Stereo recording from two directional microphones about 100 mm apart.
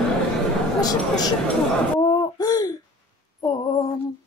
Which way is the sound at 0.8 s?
40° left (ahead or behind).